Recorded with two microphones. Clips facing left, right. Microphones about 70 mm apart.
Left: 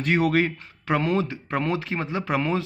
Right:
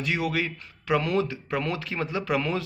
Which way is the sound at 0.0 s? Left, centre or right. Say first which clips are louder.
Left 6 dB; left.